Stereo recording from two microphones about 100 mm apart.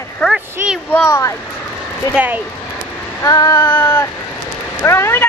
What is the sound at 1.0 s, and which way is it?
Female singing, 30° left (ahead or behind).